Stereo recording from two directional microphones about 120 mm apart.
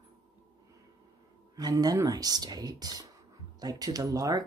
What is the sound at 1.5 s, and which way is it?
Speech, 30° right (ahead or behind).